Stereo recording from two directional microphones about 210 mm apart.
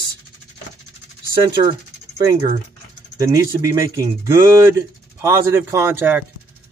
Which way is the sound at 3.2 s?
15° right (ahead or behind).